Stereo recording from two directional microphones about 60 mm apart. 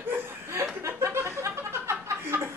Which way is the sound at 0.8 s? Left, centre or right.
Right.